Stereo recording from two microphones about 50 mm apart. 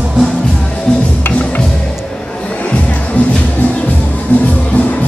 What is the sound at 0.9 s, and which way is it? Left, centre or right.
Music, centre.